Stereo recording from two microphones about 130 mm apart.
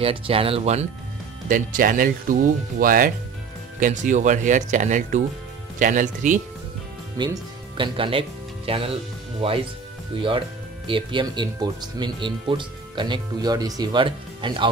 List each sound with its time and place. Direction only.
0.0 s speech: 45° right (ahead or behind)
1.5 s speech: 90° right
3.8 s speech: 75° right (ahead or behind)
5.8 s speech: 90° right
7.2 s speech: 30° right (ahead or behind)
7.7 s speech: 40° right (ahead or behind)
10.9 s speech: 40° right (ahead or behind)